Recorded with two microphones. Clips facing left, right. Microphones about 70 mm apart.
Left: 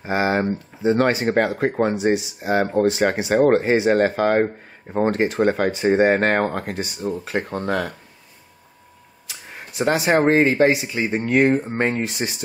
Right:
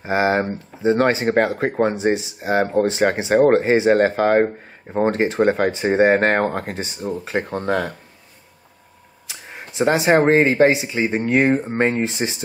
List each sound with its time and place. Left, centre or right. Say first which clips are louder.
0.0 s speech: right 2 dB; right
3.4 s speech: right 1 dB; right
9.3 s speech: right 1 dB; right